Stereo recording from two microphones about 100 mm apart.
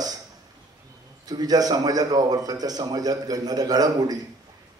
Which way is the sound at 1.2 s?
40° right (ahead or behind).